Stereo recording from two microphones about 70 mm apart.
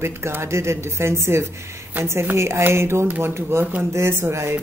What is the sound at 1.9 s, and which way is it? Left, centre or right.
Speech, right.